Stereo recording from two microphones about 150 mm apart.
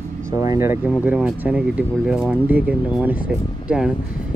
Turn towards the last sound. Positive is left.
turn(degrees=-5)  # may be behind; listen again after turning